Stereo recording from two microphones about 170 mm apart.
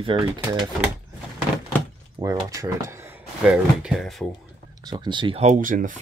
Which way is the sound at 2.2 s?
20° right (ahead or behind).